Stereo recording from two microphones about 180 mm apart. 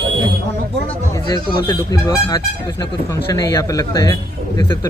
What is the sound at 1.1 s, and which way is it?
A man's voice, 25° left (ahead or behind).